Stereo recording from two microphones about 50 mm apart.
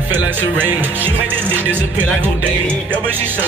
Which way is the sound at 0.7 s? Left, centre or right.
Right.